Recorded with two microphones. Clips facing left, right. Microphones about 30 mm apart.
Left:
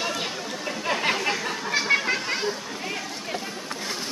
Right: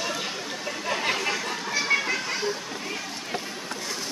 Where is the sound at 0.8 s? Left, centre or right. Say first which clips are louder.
Left 2 dB; centre.